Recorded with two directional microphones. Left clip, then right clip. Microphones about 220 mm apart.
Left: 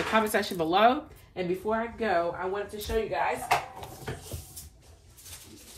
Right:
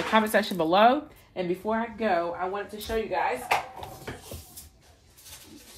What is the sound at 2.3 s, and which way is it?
Speech, 40° right (ahead or behind).